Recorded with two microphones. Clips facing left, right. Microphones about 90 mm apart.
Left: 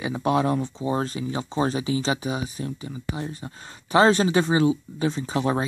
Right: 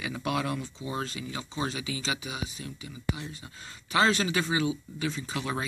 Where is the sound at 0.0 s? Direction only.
30° left (ahead or behind).